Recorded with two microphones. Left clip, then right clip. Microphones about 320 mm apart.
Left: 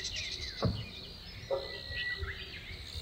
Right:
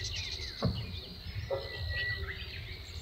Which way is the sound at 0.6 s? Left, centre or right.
Left.